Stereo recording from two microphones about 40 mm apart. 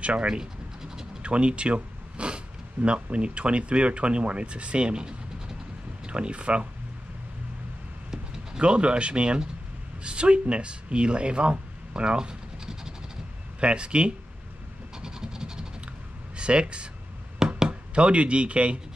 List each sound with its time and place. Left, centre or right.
0.0 s speech: right
0.3 s scratch: centre
1.2 s speech: right
8.1 s speech: centre
11.9 s scratch: right
13.6 s speech: right
15.0 s vehicle: centre
16.3 s speech: right